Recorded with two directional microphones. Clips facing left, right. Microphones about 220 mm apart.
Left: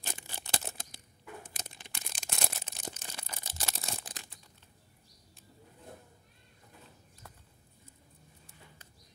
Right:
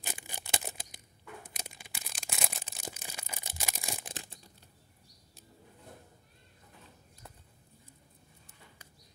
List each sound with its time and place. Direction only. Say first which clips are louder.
0.0 s tearing: even; 15° right (ahead or behind)
1.6 s a sound: even; 10° right (ahead or behind)
4.1 s crumpling: right 5 dB; 30° right (ahead or behind)